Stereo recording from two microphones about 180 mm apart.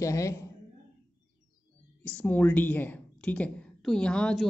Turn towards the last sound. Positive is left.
turn(degrees=5)  # may be behind; listen again after turning